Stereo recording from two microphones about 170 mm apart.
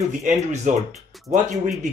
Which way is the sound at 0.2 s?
45° right (ahead or behind).